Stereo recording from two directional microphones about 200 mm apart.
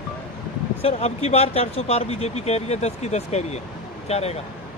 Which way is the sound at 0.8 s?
30° left (ahead or behind).